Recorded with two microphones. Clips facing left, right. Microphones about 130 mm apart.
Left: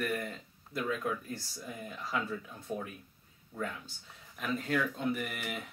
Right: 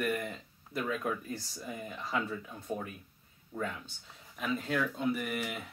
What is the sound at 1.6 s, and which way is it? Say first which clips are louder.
Speech: right 2 dB; 10° right (ahead or behind).